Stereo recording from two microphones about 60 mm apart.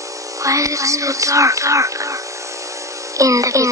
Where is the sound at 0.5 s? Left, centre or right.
Right.